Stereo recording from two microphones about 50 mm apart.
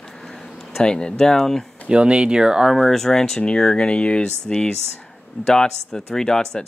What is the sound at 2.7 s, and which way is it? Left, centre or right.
Speech, centre.